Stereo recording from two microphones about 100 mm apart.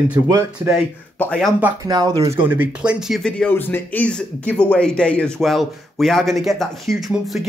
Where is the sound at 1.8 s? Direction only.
40° right (ahead or behind).